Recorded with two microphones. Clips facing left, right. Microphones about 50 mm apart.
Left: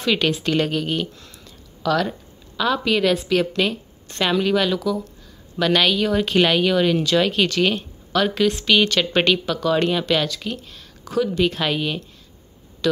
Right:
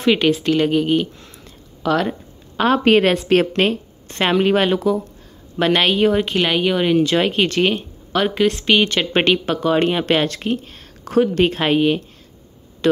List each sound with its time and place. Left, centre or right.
0.0 s speech: right
1.2 s a sound: right
2.5 s a woman's voice: right
6.3 s speech: centre
6.6 s speech: right
10.2 s a woman's voice: right